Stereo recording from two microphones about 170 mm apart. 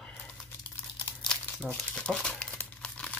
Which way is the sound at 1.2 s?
5° left (ahead or behind).